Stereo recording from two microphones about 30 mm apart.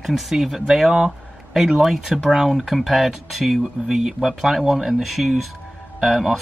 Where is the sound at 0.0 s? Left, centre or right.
Centre.